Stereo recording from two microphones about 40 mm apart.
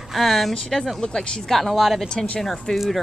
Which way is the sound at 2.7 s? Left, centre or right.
Centre.